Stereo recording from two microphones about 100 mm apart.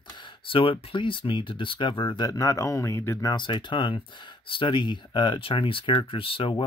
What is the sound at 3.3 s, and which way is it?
Speech, 50° left (ahead or behind).